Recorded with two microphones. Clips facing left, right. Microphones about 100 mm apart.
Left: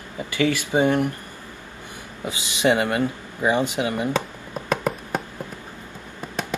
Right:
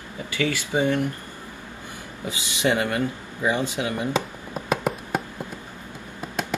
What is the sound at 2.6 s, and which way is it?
Speech, 20° left (ahead or behind).